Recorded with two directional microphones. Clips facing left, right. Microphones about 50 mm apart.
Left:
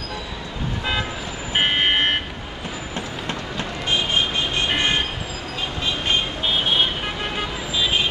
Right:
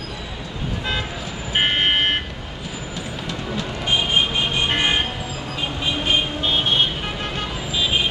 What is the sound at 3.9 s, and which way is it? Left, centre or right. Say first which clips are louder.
Vehicle: right 2 dB; centre.